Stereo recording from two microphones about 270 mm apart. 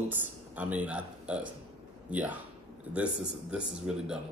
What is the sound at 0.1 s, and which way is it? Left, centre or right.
A man's voice, centre.